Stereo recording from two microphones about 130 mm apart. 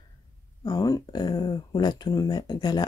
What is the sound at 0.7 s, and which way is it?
Speech, 30° left (ahead or behind).